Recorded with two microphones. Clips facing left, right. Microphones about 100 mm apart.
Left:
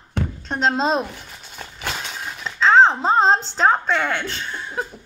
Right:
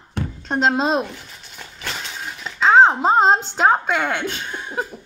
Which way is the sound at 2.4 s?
5° right (ahead or behind).